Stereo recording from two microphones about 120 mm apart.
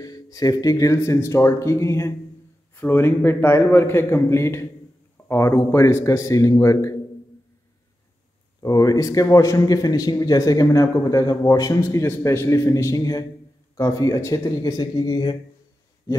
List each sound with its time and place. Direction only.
0.0 s a man's voice: 30° left (ahead or behind)
8.6 s a man's voice: 30° left (ahead or behind)
16.1 s a sound: 25° left (ahead or behind)